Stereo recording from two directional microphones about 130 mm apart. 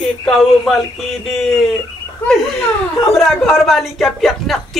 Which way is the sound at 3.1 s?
Centre (ahead or behind).